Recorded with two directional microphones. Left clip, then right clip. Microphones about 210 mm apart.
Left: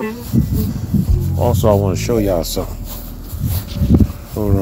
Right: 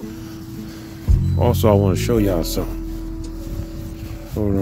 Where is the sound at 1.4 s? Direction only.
30° right (ahead or behind).